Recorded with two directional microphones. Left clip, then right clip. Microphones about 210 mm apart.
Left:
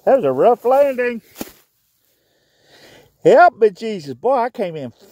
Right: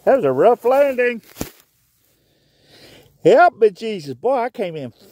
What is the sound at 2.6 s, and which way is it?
A man's voice, 10° right (ahead or behind).